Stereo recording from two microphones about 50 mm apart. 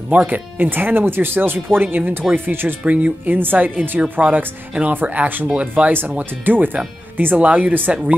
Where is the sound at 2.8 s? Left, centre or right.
Right.